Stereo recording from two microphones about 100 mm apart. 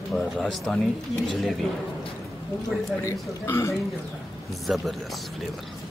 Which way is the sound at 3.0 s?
30° left (ahead or behind).